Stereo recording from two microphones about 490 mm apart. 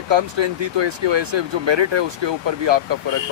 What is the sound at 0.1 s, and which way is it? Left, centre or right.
Speech, right.